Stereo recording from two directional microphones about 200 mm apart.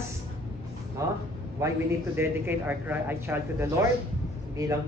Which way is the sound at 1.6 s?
15° right (ahead or behind).